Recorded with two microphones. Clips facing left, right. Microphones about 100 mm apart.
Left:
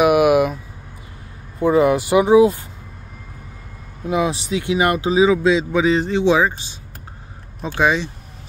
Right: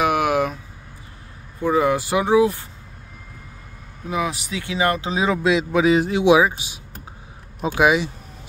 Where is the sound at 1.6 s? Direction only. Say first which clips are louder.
Left 4 dB; 20° left (ahead or behind).